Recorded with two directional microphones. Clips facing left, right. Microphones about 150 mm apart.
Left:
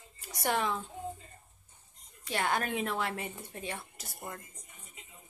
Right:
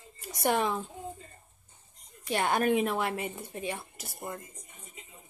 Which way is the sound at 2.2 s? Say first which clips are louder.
Right 5 dB; 20° right (ahead or behind).